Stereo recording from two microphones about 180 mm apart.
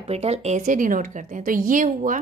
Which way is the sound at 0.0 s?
35° right (ahead or behind).